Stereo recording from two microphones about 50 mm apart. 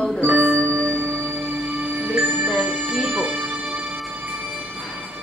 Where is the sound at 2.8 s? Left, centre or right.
Right.